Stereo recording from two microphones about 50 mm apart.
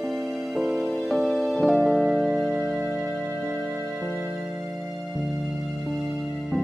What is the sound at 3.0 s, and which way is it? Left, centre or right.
Music, right.